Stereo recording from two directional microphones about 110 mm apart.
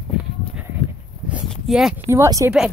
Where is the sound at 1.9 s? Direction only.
25° right (ahead or behind).